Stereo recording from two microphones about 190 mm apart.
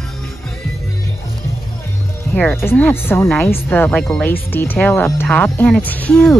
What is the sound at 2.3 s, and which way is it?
Speech, 10° left (ahead or behind).